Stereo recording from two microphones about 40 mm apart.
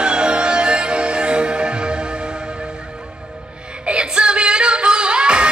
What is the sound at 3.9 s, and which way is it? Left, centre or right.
Music, right.